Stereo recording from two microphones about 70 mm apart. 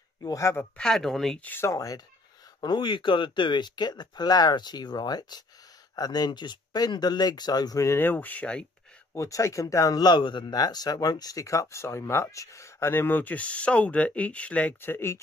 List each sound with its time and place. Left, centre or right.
0.4 s speech: left
0.7 s speech: centre
1.4 s speech: left
1.7 s speech: left
2.6 s speech: left
7.8 s speech: left; by 8.6 s centre
9.1 s speech: left; by 14.8 s centre
14.8 s speech: left